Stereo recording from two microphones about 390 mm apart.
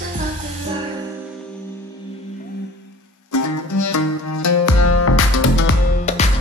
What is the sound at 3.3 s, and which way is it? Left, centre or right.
Music, left.